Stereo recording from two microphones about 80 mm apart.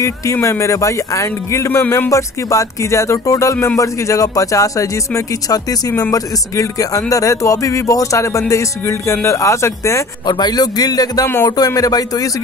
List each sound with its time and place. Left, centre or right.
0.0 s a man's voice: left
10.2 s a man's voice: left